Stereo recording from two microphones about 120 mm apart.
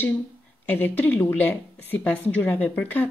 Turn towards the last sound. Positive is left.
turn(degrees=15)  # may be behind; listen again after turning